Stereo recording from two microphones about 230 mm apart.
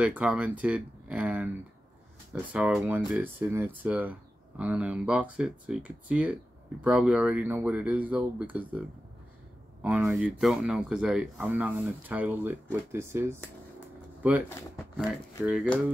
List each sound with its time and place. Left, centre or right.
0.0 s speech: centre
2.5 s speech: centre
14.5 s speech: centre
15.4 s speech: centre